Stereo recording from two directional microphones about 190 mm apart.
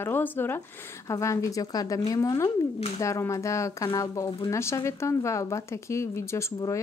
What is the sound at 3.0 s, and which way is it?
Speech, 15° left (ahead or behind).